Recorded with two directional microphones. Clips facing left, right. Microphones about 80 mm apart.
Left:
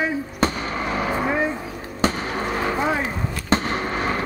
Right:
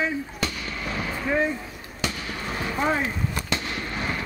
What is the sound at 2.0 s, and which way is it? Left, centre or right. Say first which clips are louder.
Basketball bounce: left 8 dB; left.